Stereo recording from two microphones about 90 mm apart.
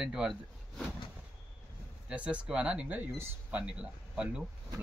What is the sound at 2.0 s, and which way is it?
Speech, 15° right (ahead or behind).